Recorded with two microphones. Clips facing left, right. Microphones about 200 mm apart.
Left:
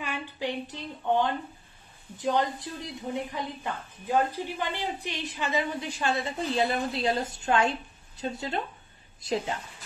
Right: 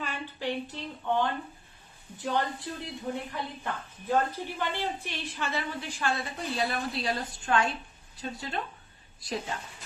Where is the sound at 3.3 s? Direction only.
15° left (ahead or behind).